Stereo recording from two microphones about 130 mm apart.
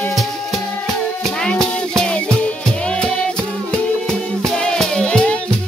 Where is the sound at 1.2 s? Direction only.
5° left (ahead or behind).